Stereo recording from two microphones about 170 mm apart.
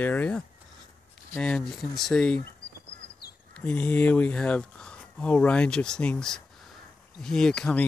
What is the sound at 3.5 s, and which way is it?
Speech, 10° left (ahead or behind).